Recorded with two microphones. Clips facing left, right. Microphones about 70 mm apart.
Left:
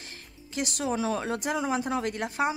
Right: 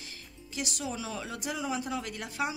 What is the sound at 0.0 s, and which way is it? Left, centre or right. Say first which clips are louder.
Speech: left 2 dB; left.